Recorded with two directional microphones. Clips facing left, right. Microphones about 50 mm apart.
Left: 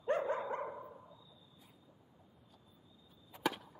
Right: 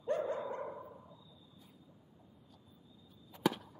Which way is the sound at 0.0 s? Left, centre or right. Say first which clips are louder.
Left 1 dB; left.